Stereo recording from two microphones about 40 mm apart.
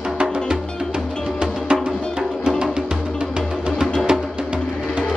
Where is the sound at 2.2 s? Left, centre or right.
Centre.